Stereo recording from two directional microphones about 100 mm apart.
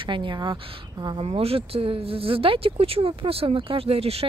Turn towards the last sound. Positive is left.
turn(degrees=-85)